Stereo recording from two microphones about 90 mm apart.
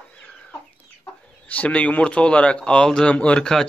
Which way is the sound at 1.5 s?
15° left (ahead or behind).